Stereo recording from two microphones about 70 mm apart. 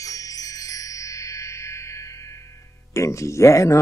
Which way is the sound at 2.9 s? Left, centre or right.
Left.